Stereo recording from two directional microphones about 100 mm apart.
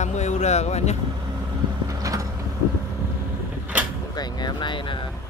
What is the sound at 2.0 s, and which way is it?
Vehicle, 35° right (ahead or behind).